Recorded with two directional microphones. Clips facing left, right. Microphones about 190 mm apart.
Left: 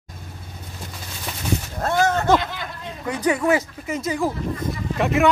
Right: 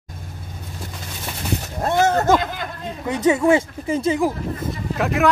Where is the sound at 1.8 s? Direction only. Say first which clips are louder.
Right 3 dB; 20° right (ahead or behind).